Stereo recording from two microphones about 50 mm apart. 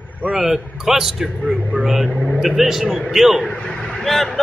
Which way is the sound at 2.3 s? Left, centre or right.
Centre.